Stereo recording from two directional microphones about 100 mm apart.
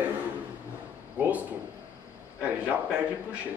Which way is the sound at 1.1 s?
15° right (ahead or behind).